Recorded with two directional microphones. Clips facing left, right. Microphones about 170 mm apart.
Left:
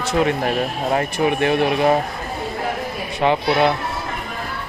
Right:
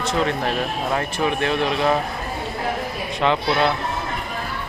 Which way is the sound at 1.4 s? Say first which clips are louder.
Left 4 dB; 55° left (ahead or behind).